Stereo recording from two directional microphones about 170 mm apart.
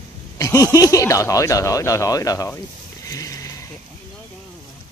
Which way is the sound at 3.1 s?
20° left (ahead or behind).